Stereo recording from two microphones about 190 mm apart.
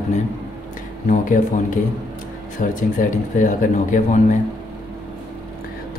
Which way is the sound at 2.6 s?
45° left (ahead or behind).